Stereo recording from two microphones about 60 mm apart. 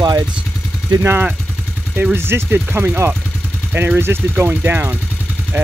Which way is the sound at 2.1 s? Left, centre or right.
Right.